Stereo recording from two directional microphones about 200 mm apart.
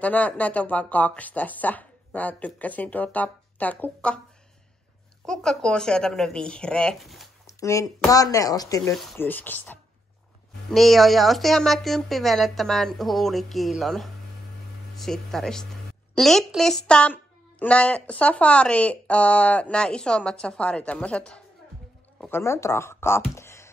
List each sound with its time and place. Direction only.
0.0 s speech: 5° left (ahead or behind)
5.2 s a woman's voice: 5° left (ahead or behind)
7.4 s a sound: 15° left (ahead or behind)
8.1 s a woman's voice: 15° left (ahead or behind)